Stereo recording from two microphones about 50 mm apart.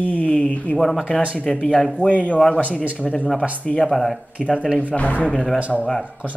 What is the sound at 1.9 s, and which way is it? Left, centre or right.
Speech, left.